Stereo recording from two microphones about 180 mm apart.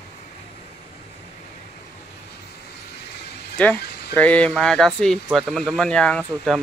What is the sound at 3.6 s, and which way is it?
Speech, 10° left (ahead or behind).